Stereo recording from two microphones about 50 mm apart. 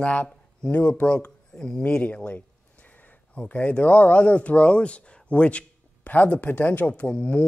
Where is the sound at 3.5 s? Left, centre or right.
Left.